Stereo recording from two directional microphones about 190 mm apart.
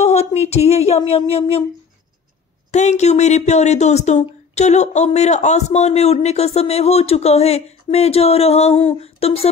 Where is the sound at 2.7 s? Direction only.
35° left (ahead or behind).